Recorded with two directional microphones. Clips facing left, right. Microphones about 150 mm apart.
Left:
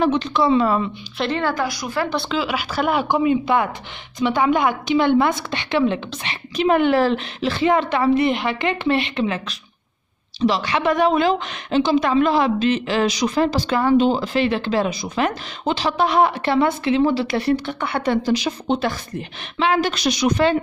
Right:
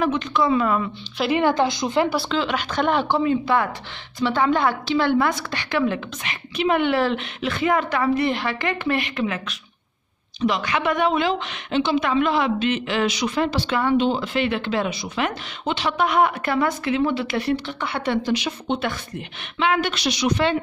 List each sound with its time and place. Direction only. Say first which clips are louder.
0.0 s a woman's voice: left 3 dB; 30° left (ahead or behind)
1.1 s a woman's voice: right 2 dB; 5° right (ahead or behind)
1.4 s a woman's voice: right 3 dB; 25° right (ahead or behind)
2.0 s a woman's voice: even; centre (ahead or behind); by 6.3 s 25° left (ahead or behind)
6.5 s a woman's voice: left 4 dB; 40° left (ahead or behind)